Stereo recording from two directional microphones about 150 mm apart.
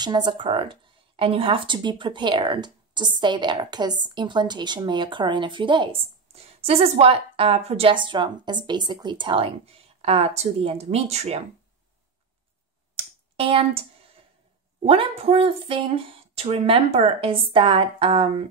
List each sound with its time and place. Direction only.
0.0 s speech: 30° right (ahead or behind); by 11.4 s 45° right (ahead or behind)
12.9 s clicking: 40° right (ahead or behind)
14.9 s speech: 40° right (ahead or behind)